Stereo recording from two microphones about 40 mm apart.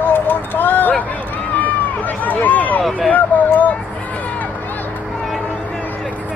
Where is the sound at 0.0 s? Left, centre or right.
Left.